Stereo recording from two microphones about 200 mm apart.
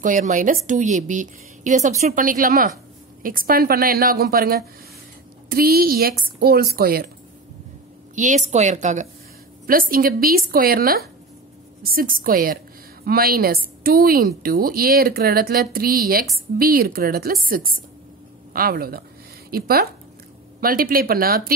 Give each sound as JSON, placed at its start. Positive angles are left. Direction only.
{"t": 0.0, "sound": "a woman's voice", "side_deg": -40}
{"t": 8.2, "sound": "a woman's voice", "side_deg": -35}